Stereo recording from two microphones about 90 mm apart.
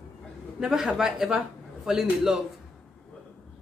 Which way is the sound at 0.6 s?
5° right (ahead or behind).